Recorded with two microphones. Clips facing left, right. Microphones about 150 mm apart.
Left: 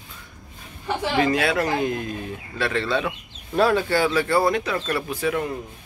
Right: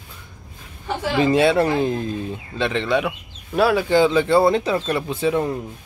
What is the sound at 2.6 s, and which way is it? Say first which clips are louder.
Speech: right 3 dB; 20° right (ahead or behind).